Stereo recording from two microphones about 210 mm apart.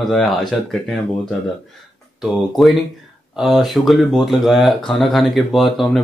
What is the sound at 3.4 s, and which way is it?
Speech, centre (ahead or behind).